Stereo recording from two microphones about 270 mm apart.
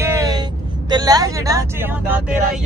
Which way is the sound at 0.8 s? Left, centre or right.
Centre.